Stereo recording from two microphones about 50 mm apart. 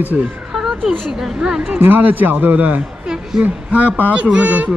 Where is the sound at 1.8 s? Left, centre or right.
Right.